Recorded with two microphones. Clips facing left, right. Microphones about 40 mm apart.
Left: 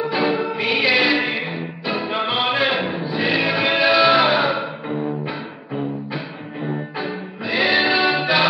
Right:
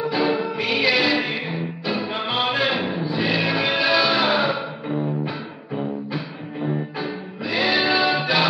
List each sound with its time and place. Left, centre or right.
0.1 s music: centre
7.0 s music: centre